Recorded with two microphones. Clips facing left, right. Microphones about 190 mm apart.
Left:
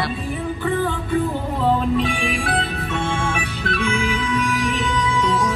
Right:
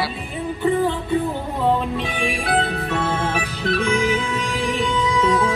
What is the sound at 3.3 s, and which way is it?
Music, 35° right (ahead or behind).